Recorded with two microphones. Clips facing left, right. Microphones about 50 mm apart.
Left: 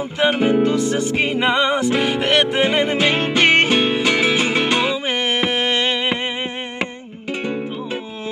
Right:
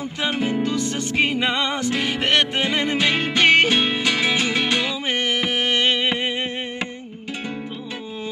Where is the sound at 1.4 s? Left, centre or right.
Centre; by 4.9 s left.